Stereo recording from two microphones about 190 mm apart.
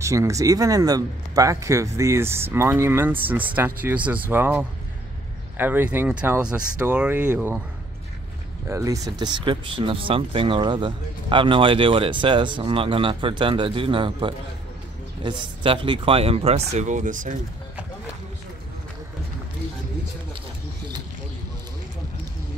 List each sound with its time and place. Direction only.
0.0 s speech: 15° right (ahead or behind)
8.6 s speech: 15° right (ahead or behind); by 17.4 s 45° right (ahead or behind)